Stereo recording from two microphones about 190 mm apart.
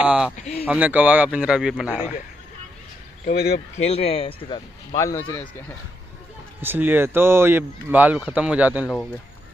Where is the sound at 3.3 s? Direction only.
50° left (ahead or behind).